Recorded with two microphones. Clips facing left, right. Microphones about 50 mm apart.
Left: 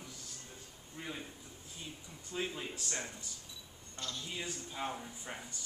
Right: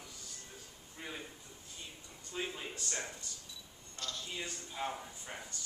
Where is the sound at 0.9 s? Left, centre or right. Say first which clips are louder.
Left 1 dB; centre.